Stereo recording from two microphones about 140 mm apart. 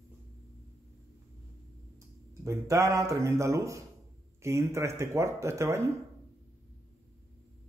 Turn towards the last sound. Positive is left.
turn(degrees=-20)  # may be behind; listen again after turning